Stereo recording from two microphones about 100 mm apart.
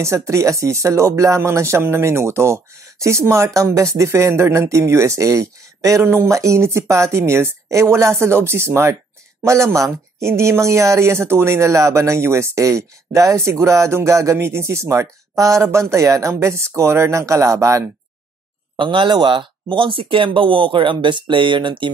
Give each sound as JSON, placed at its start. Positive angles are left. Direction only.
{"t": 0.0, "sound": "speech", "side_deg": -30}
{"t": 10.2, "sound": "speech", "side_deg": -25}
{"t": 18.8, "sound": "speech", "side_deg": -55}